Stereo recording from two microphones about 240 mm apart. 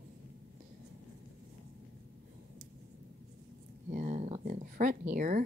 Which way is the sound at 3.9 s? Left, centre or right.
Right.